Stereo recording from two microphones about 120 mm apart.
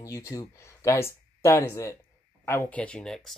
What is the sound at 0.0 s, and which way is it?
Speech, 25° left (ahead or behind).